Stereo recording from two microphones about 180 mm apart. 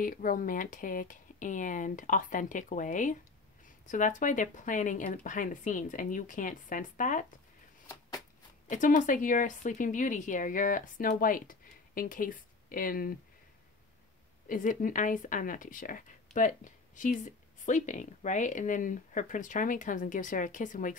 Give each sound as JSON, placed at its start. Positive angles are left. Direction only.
{"t": 0.0, "sound": "speech", "side_deg": 50}
{"t": 8.6, "sound": "speech", "side_deg": 45}
{"t": 14.5, "sound": "speech", "side_deg": 45}